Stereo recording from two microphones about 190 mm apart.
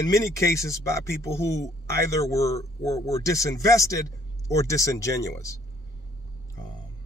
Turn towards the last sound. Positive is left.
turn(degrees=15)  # may be behind; listen again after turning